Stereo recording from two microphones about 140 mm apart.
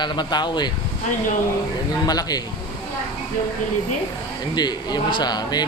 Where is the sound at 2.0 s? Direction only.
30° left (ahead or behind).